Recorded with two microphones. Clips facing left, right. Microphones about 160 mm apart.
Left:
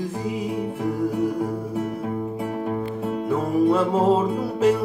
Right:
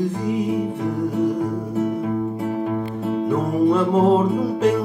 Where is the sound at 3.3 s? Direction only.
5° left (ahead or behind).